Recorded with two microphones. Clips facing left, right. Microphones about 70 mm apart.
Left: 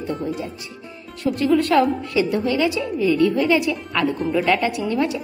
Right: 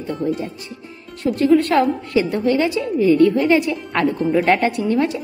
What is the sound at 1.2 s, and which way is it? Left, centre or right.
A woman's voice, right.